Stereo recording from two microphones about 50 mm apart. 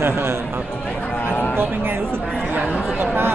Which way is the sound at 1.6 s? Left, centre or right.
Right.